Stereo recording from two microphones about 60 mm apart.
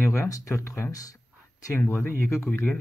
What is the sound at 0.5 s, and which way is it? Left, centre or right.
Speech, left.